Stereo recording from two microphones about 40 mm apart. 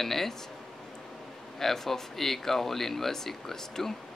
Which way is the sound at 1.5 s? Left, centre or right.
Centre.